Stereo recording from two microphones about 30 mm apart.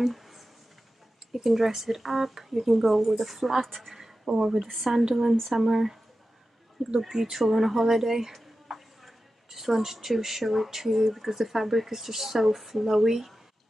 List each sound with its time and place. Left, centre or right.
0.1 s a sound: centre
1.3 s speech: centre
3.6 s a woman's voice: centre
3.9 s a sound: centre
4.9 s speech: centre
5.4 s speech: centre
7.0 s speech: centre